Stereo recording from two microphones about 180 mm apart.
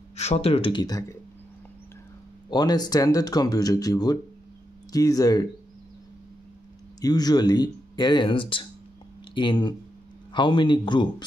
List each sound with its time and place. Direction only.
0.1 s speech: 35° left (ahead or behind); by 1.1 s 20° left (ahead or behind)
2.5 s speech: 20° left (ahead or behind)
7.0 s speech: 20° left (ahead or behind)